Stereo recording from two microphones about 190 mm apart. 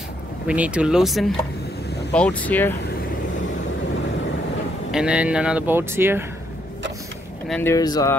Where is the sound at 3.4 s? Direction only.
80° left.